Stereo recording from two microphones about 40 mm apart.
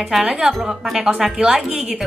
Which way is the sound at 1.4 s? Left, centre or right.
Right.